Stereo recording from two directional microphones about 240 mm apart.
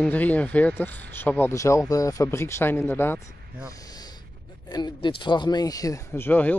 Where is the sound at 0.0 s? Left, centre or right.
Centre.